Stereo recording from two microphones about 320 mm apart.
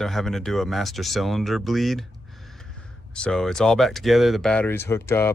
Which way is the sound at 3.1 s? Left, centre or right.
Centre.